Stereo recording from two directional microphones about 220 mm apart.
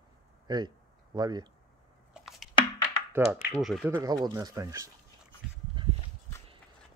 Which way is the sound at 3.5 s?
Centre (ahead or behind).